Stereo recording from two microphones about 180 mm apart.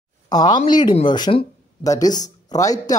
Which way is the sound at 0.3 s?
25° left (ahead or behind).